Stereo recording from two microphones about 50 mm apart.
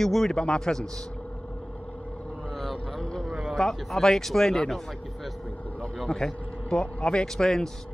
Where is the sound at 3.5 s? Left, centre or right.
Centre.